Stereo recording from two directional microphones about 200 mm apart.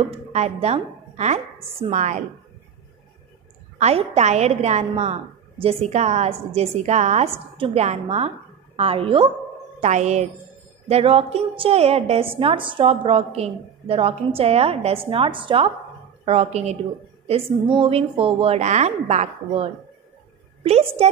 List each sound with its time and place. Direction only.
0.0 s a woman's voice: 30° right (ahead or behind)
3.7 s a woman's voice: 30° right (ahead or behind)